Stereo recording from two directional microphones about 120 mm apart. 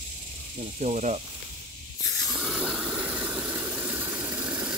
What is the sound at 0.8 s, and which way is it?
Speech, 80° right.